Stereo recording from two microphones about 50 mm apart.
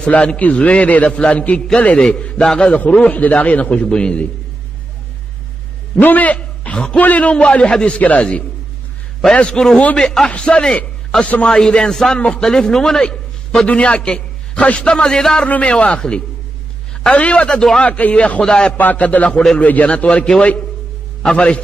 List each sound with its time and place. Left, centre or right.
0.0 s a man's voice: left
2.0 s a man's voice: centre
2.9 s a man's voice: left
3.9 s a man's voice: centre
5.9 s a man's voice: left
6.3 s chuckle: left
7.0 s a man's voice: left; by 15.4 s centre
15.4 s a man's voice: left
17.5 s a man's voice: centre
17.7 s a man's voice: left
18.4 s a man's voice: centre
18.8 s a man's voice: left